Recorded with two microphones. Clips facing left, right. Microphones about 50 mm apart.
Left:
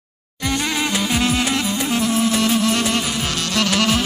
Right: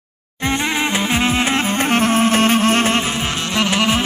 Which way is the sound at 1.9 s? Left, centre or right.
Right.